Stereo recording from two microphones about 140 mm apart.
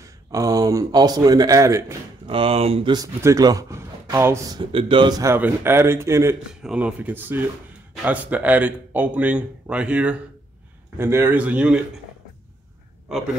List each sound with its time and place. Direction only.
0.0 s speech: 25° right (ahead or behind)
2.2 s speech: 40° right (ahead or behind)
3.2 s speech: 25° right (ahead or behind)
4.6 s speech: 35° right (ahead or behind)
5.2 s speech: 15° right (ahead or behind)
6.6 s speech: 10° right (ahead or behind)